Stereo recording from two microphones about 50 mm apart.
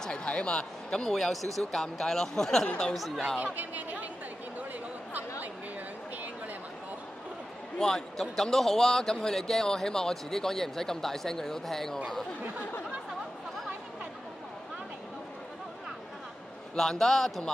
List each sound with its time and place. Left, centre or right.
0.0 s speech: centre
3.5 s speech: right
7.8 s speech: centre
16.7 s speech: centre